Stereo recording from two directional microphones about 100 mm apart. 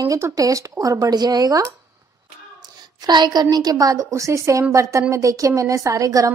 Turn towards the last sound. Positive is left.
turn(degrees=-35)  # may be behind; listen again after turning